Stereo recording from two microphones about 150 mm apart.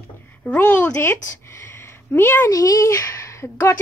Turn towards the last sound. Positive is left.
turn(degrees=20)  # may be behind; listen again after turning